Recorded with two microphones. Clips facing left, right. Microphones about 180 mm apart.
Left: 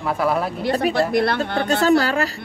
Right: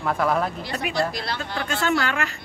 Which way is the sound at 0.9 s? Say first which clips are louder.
Left 5 dB; 55° left (ahead or behind).